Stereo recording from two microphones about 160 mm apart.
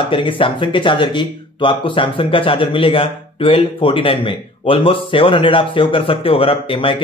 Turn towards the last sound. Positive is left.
turn(degrees=35)  # may be behind; listen again after turning